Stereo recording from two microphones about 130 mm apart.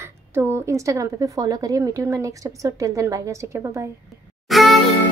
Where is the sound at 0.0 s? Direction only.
20° right (ahead or behind).